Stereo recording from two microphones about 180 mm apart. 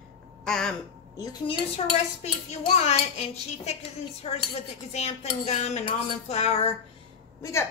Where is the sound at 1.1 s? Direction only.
20° left (ahead or behind).